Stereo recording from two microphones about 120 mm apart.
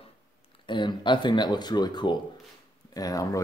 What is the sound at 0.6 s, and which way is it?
Speech, 40° left (ahead or behind).